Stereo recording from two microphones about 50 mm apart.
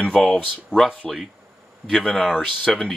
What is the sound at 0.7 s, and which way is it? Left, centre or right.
Speech, left.